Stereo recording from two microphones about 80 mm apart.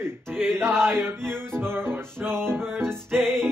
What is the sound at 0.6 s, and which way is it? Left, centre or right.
Speech, right.